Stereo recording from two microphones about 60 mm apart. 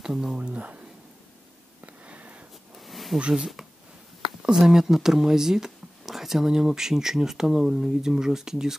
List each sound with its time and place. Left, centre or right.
0.0 s speech: centre
0.4 s speech: right
2.0 s sniff: right
2.7 s a sound: centre
3.3 s speech: centre